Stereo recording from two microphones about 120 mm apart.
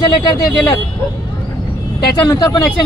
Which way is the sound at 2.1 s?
35° left (ahead or behind).